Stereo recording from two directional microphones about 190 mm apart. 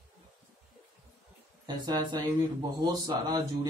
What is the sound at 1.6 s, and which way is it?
Speech, 20° right (ahead or behind).